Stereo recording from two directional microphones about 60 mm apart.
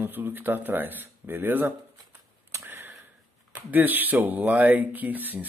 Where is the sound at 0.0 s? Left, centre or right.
Right.